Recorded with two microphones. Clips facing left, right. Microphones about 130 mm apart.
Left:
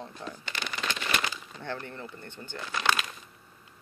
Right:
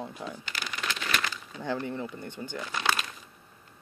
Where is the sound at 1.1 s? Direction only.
15° left (ahead or behind).